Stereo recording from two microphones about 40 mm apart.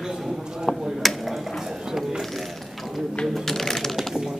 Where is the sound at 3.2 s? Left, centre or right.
Centre.